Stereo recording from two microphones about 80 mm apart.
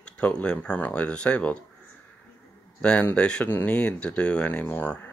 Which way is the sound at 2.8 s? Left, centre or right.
Centre.